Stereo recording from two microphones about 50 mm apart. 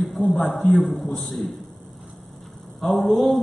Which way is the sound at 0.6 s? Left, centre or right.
Centre.